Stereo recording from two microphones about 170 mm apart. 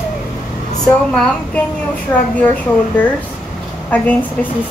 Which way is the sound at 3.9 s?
10° left (ahead or behind).